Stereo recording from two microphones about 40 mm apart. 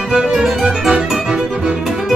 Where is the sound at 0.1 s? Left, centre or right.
Centre.